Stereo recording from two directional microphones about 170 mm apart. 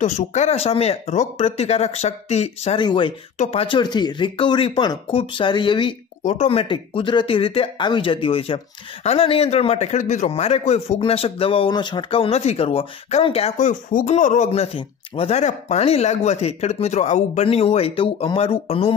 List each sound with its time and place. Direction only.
0.0 s a man's voice: 45° left (ahead or behind)
2.8 s speech: 25° left (ahead or behind)
3.3 s speech: 35° left (ahead or behind)
6.2 s a man's voice: 45° left (ahead or behind)